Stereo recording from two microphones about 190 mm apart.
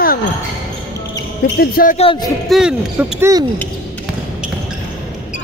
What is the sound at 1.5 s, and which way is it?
Speech, 50° left (ahead or behind).